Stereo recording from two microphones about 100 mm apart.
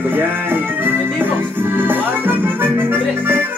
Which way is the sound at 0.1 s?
20° right (ahead or behind).